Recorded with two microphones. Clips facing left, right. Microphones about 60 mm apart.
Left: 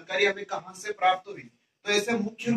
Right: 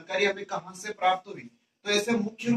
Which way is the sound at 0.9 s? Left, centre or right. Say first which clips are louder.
Left 1 dB; left.